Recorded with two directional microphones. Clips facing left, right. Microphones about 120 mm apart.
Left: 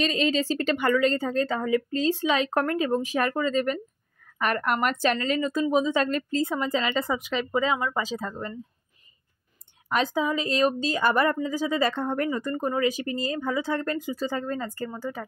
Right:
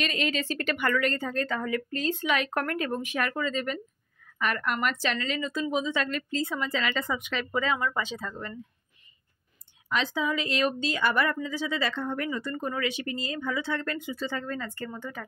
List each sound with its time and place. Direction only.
0.0 s a woman's voice: 30° left (ahead or behind)
8.0 s a woman's voice: 35° left (ahead or behind)
9.8 s a woman's voice: 45° left (ahead or behind)
10.2 s a woman's voice: 35° left (ahead or behind)